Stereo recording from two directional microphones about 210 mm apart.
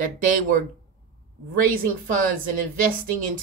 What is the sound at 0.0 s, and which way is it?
Speech, 40° right (ahead or behind).